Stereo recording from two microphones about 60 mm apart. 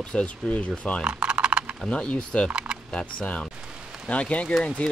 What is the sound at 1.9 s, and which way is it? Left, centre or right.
Speech, centre.